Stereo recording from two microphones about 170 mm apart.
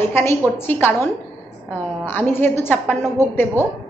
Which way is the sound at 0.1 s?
15° left (ahead or behind).